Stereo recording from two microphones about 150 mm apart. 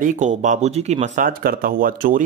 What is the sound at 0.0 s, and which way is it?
Speech, 55° right (ahead or behind).